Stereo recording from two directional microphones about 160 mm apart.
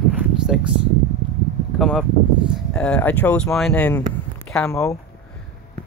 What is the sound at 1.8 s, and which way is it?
Speech, centre (ahead or behind).